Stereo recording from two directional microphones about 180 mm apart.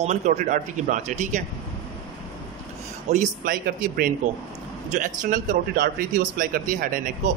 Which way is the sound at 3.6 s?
55° right (ahead or behind).